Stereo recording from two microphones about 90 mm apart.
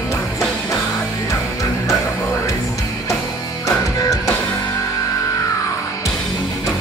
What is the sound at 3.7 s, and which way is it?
Music, 35° left (ahead or behind).